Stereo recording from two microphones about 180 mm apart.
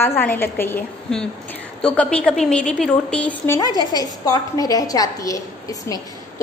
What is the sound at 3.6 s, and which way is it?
A woman's voice, 20° left (ahead or behind).